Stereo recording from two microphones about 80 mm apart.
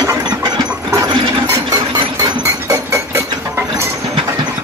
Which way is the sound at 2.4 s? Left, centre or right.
Right.